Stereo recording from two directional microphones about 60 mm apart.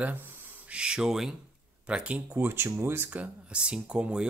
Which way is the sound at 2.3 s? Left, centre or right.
Right.